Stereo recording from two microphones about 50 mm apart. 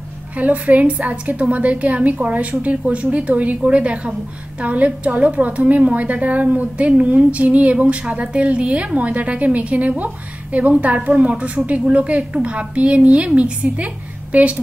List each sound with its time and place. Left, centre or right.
0.4 s a woman's voice: right